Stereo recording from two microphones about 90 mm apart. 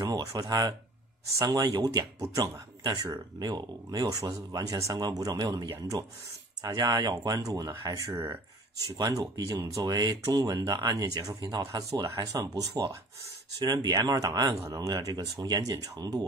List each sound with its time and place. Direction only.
0.0 s speech: 40° right (ahead or behind)